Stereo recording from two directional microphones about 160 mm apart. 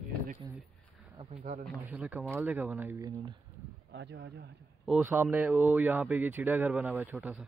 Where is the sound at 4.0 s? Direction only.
90° right.